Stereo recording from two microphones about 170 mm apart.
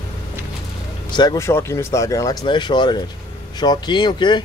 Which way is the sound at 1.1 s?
25° left (ahead or behind).